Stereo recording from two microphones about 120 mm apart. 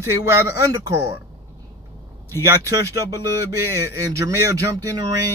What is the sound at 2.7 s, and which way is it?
Speech, 25° right (ahead or behind).